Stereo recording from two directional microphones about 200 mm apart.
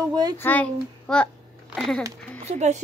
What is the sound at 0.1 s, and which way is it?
Speech, 20° right (ahead or behind).